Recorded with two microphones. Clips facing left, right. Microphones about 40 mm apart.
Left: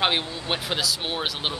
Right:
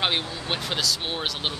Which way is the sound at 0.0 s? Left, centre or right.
Centre.